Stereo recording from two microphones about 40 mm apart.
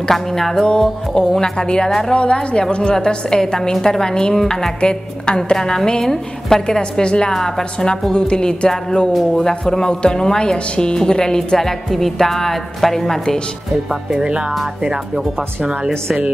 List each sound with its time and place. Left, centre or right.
0.1 s speech: centre
0.7 s a woman's voice: left
1.9 s speech: centre
2.1 s a woman's voice: left
6.8 s a woman's voice: left
14.1 s speech: centre